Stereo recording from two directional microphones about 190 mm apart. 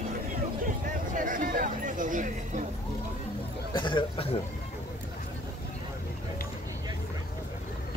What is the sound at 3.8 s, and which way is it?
Speech, 25° left (ahead or behind).